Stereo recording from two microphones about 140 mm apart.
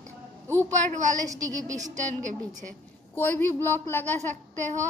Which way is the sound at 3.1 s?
15° left (ahead or behind).